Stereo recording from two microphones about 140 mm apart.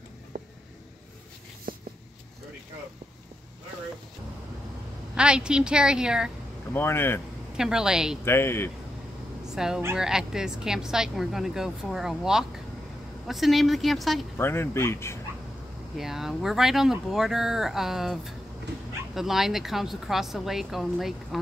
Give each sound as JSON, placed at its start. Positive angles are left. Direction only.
{"t": 1.7, "sound": "a sound", "side_deg": -90}
{"t": 5.1, "sound": "speech", "side_deg": -5}
{"t": 6.7, "sound": "speech", "side_deg": 15}
{"t": 7.5, "sound": "speech", "side_deg": -5}
{"t": 8.3, "sound": "speech", "side_deg": 15}
{"t": 9.6, "sound": "speech", "side_deg": -5}
{"t": 14.3, "sound": "speech", "side_deg": 15}
{"t": 16.0, "sound": "speech", "side_deg": 0}